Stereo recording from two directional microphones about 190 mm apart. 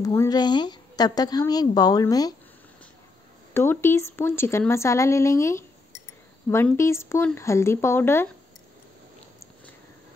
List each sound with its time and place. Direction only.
0.0 s a woman's voice: 15° left (ahead or behind)
3.5 s speech: 15° left (ahead or behind)